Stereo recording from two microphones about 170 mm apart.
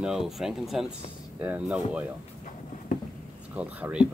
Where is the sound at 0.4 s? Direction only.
Centre (ahead or behind).